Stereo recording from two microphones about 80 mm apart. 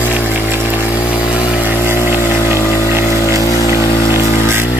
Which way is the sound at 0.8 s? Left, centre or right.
Left.